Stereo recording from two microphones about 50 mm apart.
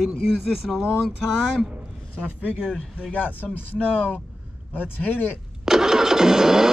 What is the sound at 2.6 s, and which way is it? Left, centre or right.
Speech, centre.